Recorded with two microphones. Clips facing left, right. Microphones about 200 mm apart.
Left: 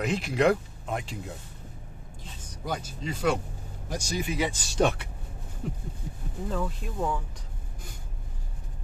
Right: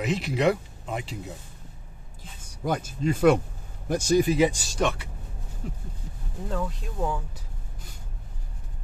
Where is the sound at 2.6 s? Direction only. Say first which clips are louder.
Right 7 dB; 50° right (ahead or behind).